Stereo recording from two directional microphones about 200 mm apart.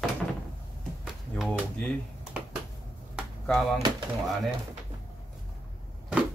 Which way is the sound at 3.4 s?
Centre (ahead or behind).